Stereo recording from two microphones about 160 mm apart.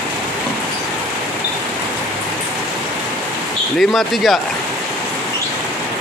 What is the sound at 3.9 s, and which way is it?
Speech, centre (ahead or behind).